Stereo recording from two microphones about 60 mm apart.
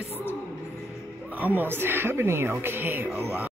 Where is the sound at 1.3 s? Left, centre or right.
Right.